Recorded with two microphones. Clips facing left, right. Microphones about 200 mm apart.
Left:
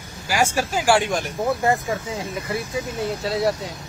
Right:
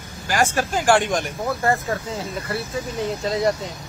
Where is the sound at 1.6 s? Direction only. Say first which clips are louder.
Left 1 dB; 15° left (ahead or behind).